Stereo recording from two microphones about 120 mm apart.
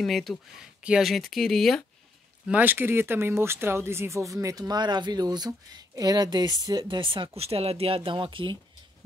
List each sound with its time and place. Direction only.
0.0 s speech: centre (ahead or behind)
2.4 s speech: 15° right (ahead or behind); by 8.5 s 45° right (ahead or behind)